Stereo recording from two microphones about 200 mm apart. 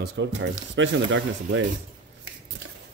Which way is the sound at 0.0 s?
60° right (ahead or behind).